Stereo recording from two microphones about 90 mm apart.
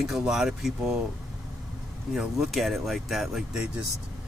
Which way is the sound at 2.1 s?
Centre (ahead or behind).